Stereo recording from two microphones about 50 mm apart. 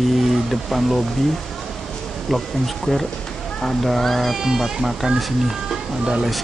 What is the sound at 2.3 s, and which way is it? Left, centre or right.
Speech, centre.